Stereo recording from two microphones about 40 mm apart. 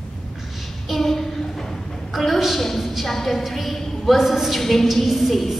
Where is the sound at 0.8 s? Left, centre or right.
Centre.